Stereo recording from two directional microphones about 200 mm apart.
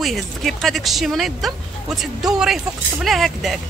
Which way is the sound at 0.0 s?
Centre (ahead or behind).